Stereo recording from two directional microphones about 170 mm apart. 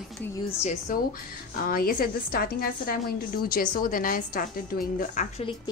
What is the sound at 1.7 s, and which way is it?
A woman's voice, 60° left (ahead or behind).